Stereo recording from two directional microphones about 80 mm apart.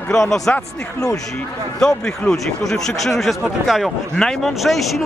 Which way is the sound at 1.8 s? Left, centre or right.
Centre.